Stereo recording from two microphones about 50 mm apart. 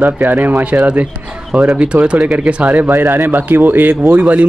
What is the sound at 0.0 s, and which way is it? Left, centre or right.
Speech, right.